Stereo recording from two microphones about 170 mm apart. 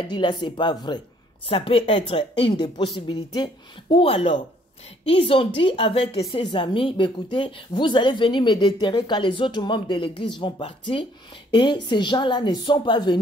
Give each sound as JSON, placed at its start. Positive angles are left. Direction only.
{"t": 0.1, "sound": "a woman's voice", "side_deg": 25}